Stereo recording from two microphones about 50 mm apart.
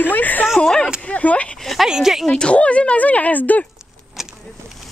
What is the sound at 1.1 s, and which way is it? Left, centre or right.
Speech, left.